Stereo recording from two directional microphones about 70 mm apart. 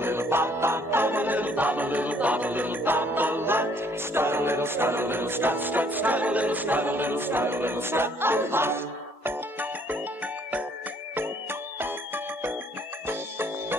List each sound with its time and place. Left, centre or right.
0.0 s music: right
11.8 s music: right